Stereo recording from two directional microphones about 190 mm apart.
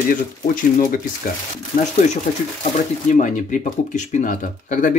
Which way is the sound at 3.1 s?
40° left (ahead or behind).